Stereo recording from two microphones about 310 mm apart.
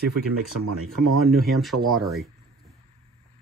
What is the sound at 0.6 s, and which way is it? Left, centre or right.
Speech, right.